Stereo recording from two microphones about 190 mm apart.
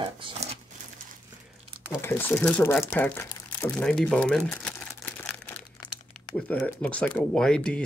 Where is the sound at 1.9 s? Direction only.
10° left (ahead or behind).